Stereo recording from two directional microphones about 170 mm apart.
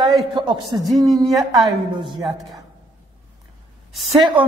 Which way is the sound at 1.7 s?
25° right (ahead or behind).